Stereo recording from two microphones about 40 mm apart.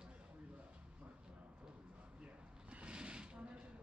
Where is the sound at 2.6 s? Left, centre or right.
Right.